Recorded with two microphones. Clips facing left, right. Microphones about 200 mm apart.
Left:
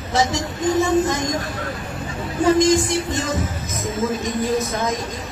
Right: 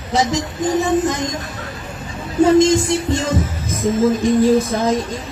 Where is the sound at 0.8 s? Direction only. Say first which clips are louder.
Right 1 dB; 20° right (ahead or behind).